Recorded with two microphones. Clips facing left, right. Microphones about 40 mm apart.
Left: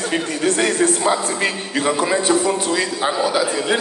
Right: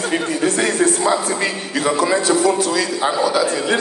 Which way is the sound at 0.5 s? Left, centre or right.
Left.